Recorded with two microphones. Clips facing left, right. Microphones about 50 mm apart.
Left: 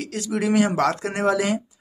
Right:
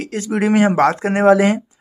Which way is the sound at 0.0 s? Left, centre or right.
Right.